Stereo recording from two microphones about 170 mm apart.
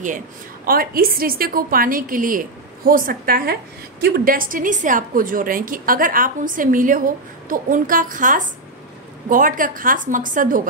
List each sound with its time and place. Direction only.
0.7 s a woman's voice: 60° right (ahead or behind)